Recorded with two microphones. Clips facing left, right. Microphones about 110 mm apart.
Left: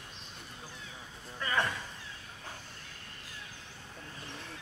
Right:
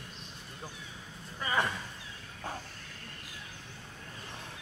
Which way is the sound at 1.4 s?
15° right (ahead or behind).